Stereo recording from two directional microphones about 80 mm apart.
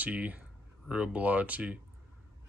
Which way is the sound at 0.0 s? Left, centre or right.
Centre.